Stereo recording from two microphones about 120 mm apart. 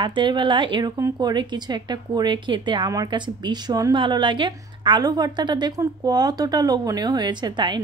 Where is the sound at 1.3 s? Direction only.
40° right (ahead or behind).